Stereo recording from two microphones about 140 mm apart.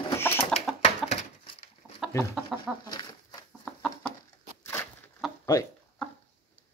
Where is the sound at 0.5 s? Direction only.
5° left (ahead or behind).